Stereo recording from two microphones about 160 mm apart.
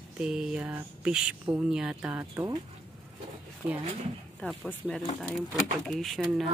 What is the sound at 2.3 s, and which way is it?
Speech, 20° right (ahead or behind).